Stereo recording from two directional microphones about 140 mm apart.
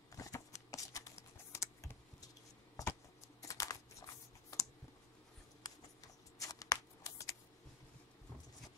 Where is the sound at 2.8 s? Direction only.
25° left (ahead or behind).